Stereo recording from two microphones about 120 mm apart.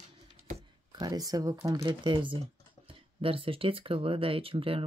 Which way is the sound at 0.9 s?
35° right (ahead or behind).